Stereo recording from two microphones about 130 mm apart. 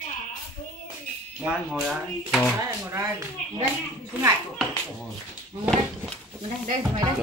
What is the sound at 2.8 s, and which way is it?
Speech, 20° right (ahead or behind).